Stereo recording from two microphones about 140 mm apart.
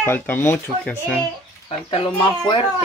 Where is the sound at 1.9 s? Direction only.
35° left (ahead or behind).